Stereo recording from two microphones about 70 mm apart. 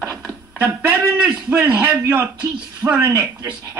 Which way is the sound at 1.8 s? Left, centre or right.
Right.